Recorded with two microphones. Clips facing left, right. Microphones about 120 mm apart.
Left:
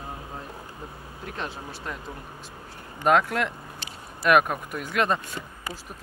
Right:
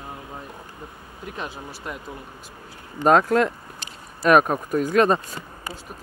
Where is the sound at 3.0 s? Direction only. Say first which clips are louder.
Right 5 dB; 35° right (ahead or behind).